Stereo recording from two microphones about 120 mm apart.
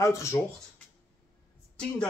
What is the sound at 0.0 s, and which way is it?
Speech, 25° left (ahead or behind).